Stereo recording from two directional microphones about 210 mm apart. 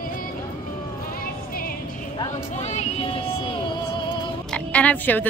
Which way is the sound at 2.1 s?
30° left (ahead or behind).